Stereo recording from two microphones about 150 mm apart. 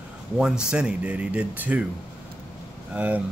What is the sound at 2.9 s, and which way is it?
Speech, 10° right (ahead or behind).